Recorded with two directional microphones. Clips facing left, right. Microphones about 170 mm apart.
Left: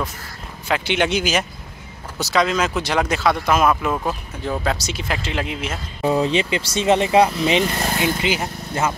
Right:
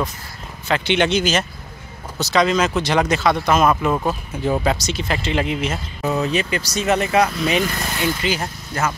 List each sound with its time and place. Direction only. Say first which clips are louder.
0.7 s speech: right 2 dB; 5° left (ahead or behind)
6.0 s speech: left 2 dB; 30° left (ahead or behind)
8.0 s speech: right 1 dB; 20° left (ahead or behind)